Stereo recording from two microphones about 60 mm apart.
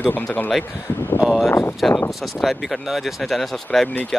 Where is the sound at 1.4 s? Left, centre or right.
Left.